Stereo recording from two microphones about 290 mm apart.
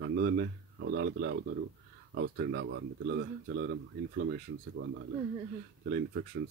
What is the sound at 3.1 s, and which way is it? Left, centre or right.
Speech, right.